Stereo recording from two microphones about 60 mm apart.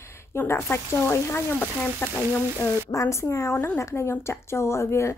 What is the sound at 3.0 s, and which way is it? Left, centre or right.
A woman's voice, left.